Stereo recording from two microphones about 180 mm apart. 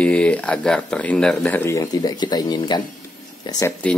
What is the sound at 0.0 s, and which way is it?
Speech, 5° left (ahead or behind).